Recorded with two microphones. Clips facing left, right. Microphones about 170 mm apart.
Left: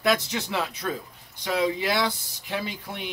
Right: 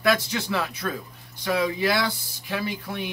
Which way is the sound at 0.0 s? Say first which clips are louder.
Right 1 dB; 20° left (ahead or behind).